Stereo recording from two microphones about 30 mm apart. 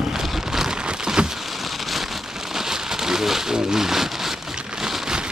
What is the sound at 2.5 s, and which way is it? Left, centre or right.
Rain, centre.